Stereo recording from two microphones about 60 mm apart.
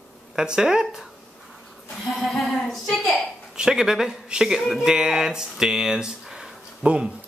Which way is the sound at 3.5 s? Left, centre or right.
Centre.